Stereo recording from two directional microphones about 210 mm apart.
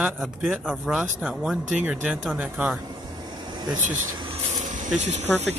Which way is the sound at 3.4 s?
20° right (ahead or behind).